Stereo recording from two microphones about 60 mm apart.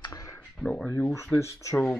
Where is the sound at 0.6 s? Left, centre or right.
Centre.